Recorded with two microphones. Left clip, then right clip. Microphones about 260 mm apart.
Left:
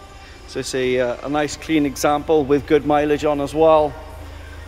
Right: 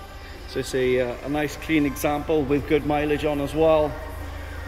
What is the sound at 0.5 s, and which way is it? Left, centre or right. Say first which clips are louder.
A man's voice: left 2 dB; centre.